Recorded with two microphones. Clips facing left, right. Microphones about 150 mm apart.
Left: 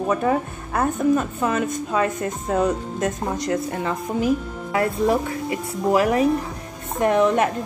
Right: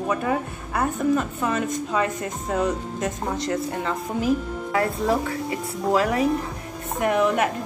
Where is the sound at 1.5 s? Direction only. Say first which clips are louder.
Even; 20° left (ahead or behind).